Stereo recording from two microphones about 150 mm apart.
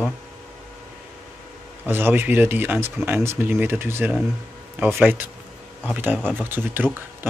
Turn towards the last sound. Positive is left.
turn(degrees=-15)  # may be behind; listen again after turning